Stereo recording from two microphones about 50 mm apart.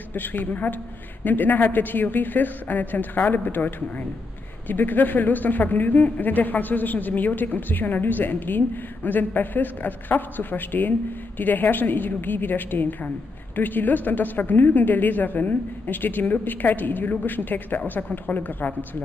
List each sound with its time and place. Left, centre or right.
0.1 s a woman's voice: left